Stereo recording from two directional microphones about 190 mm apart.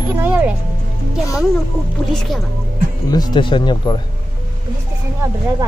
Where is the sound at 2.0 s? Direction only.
Centre (ahead or behind).